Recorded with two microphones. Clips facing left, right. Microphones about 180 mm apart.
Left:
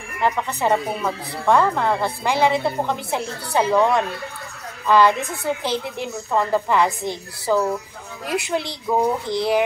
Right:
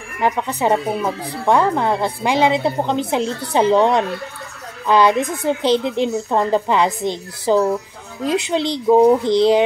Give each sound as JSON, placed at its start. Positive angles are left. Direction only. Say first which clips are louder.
{"t": 0.2, "sound": "a woman's voice", "louder": "right 3 dB", "side_deg": -15}